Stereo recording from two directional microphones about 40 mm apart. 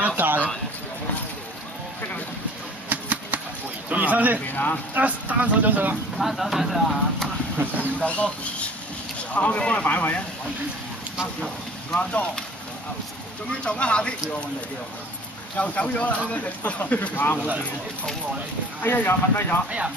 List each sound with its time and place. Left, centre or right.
0.0 s a sound: right
2.9 s a sound: right
3.9 s a man's voice: right
4.5 s speech: left
4.9 s speech: right
6.1 s speech: centre
7.5 s speech: right
8.0 s speech: left
9.6 s speech: left
11.9 s speech: left
13.5 s speech: left
15.5 s speech: left
18.9 s speech: left